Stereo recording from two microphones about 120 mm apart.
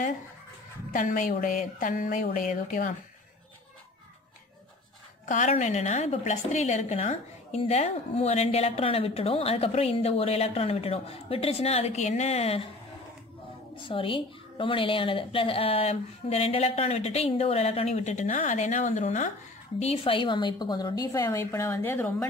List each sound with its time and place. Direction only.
0.9 s a woman's voice: 90° left
5.2 s a woman's voice: 90° left; by 12.6 s 60° left (ahead or behind)
13.7 s a woman's voice: 45° left (ahead or behind); by 19.3 s 90° left
19.8 s a woman's voice: 55° left (ahead or behind); by 21.4 s 30° left (ahead or behind)
21.4 s speech: 20° left (ahead or behind)